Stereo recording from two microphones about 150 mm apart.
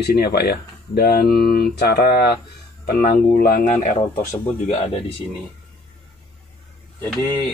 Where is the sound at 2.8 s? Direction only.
75° left (ahead or behind).